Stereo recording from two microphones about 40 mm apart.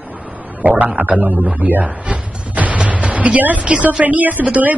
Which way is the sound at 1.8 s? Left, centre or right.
Right.